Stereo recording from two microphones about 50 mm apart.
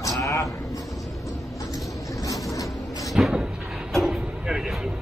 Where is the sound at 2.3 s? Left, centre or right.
Left.